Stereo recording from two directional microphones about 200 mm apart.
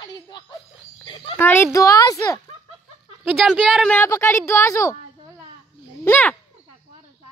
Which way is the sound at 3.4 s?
Centre (ahead or behind).